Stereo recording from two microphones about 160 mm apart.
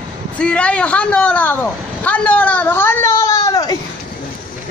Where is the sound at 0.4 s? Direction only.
5° left (ahead or behind).